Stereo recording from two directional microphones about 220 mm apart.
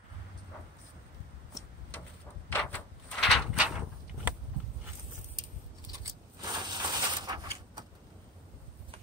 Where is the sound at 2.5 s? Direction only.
5° left (ahead or behind).